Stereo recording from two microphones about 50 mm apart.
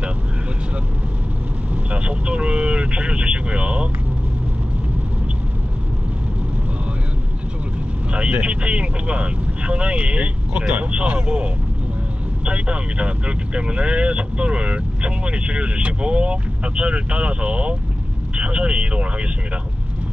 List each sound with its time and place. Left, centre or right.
1.9 s vehicle: right
8.1 s vehicle: right
10.7 s speech: right